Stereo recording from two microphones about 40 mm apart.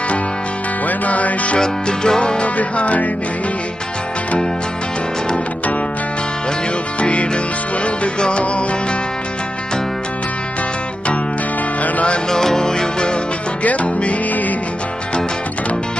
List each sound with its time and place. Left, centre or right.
0.8 s music: left
1.6 s music: centre
2.5 s music: left
7.0 s music: left
11.8 s music: left
12.3 s music: centre
13.7 s music: left